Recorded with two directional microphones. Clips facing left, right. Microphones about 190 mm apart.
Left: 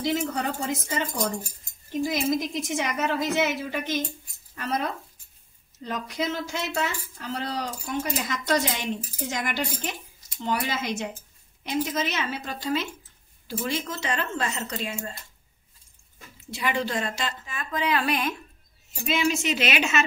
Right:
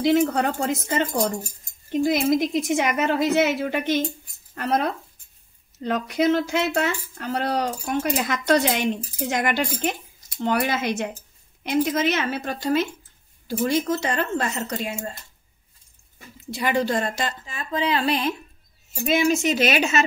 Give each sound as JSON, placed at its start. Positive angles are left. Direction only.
{"t": 0.0, "sound": "speech", "side_deg": -65}
{"t": 5.9, "sound": "speech", "side_deg": -65}
{"t": 16.5, "sound": "speech", "side_deg": -40}
{"t": 17.5, "sound": "a woman's voice", "side_deg": -30}
{"t": 19.0, "sound": "speech", "side_deg": -45}